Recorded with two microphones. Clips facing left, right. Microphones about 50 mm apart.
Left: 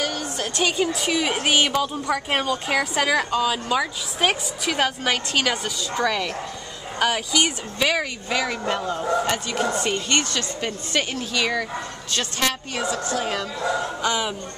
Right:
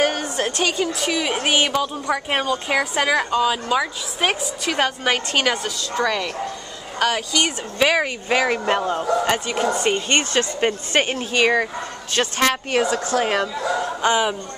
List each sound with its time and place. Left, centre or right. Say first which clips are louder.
0.0 s music: right 6 dB; right
0.7 s speech: right 1 dB; centre
5.1 s a woman's voice: right 2 dB; centre
5.5 s speech: right 2 dB; centre
7.8 s speech: right 4 dB; right
12.7 s speech: right 6 dB; right
14.0 s speech: right 6 dB; right